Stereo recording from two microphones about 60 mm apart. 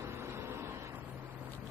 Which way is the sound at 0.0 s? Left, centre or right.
Right.